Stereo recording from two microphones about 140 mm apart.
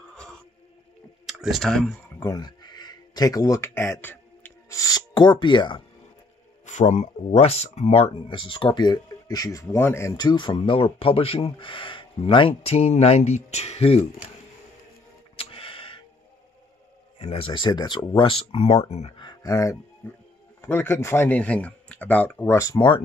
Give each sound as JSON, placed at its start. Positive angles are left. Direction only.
{"t": 0.1, "sound": "music", "side_deg": 5}
{"t": 1.2, "sound": "speech", "side_deg": -5}
{"t": 2.1, "sound": "speech", "side_deg": 25}
{"t": 6.6, "sound": "speech", "side_deg": 60}
{"t": 15.3, "sound": "music", "side_deg": 40}
{"t": 17.2, "sound": "speech", "side_deg": 40}
{"t": 18.6, "sound": "speech", "side_deg": 50}
{"t": 19.1, "sound": "speech", "side_deg": 30}
{"t": 22.8, "sound": "speech", "side_deg": 35}